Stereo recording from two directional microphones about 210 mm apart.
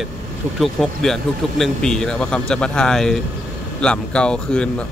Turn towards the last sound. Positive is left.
turn(degrees=5)  # may be behind; listen again after turning